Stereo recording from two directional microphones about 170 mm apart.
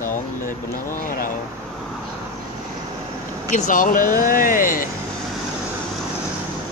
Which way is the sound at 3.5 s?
50° left (ahead or behind).